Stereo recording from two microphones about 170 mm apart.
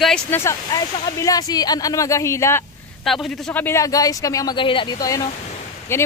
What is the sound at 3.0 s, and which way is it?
A woman's voice, centre (ahead or behind).